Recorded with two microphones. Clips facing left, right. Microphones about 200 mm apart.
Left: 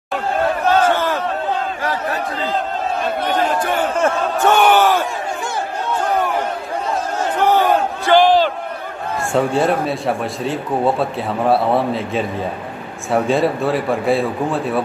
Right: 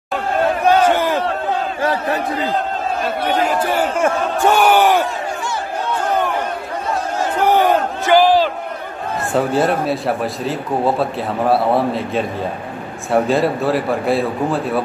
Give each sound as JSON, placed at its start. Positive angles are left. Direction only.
{"t": 0.7, "sound": "crowd", "side_deg": -15}
{"t": 3.3, "sound": "speech", "side_deg": -10}
{"t": 7.3, "sound": "crowd", "side_deg": -15}
{"t": 9.3, "sound": "a man's voice", "side_deg": 0}